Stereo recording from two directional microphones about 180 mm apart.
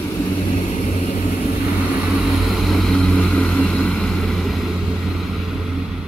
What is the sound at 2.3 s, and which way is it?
Vehicle, centre (ahead or behind).